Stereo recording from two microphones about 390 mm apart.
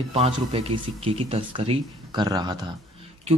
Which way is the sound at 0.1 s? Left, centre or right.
Centre.